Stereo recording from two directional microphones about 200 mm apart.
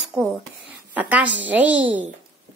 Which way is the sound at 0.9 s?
5° right (ahead or behind).